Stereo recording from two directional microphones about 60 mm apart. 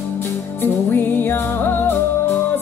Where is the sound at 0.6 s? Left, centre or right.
Left.